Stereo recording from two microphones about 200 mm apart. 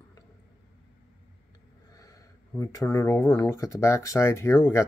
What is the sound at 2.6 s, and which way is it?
Speech, 15° left (ahead or behind).